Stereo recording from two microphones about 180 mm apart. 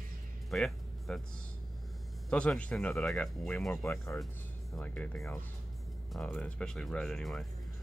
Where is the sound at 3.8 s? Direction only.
15° left (ahead or behind).